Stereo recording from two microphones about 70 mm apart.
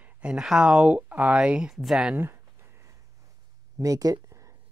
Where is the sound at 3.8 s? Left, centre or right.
Right.